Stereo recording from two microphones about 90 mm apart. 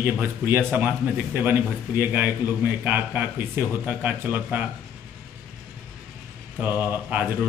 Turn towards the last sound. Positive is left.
turn(degrees=-15)  # may be behind; listen again after turning